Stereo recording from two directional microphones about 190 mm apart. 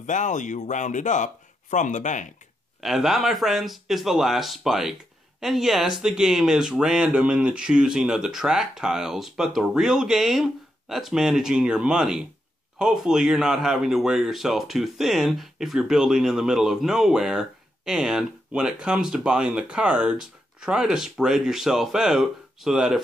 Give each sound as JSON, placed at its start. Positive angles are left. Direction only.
{"t": 0.0, "sound": "speech", "side_deg": 40}
{"t": 2.8, "sound": "speech", "side_deg": 0}